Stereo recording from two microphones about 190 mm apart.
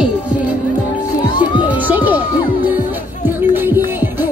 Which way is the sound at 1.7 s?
10° right (ahead or behind).